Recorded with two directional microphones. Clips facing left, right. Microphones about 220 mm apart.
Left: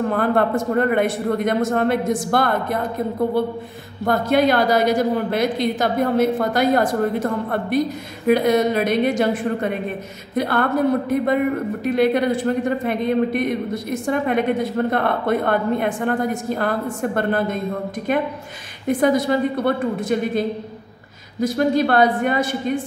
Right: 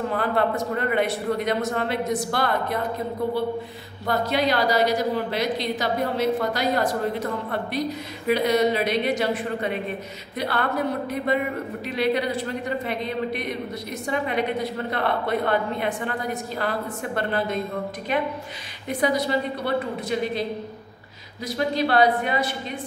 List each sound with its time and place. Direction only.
0.1 s speech: 50° left (ahead or behind)
4.0 s speech: 50° left (ahead or behind)
18.9 s speech: 50° left (ahead or behind)